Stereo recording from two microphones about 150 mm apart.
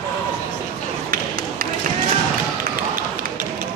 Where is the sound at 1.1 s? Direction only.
70° right (ahead or behind).